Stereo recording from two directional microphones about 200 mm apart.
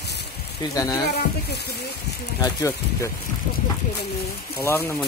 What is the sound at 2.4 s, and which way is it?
Speech, 15° left (ahead or behind).